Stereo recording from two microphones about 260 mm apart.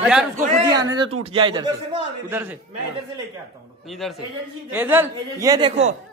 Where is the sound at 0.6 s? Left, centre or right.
Centre.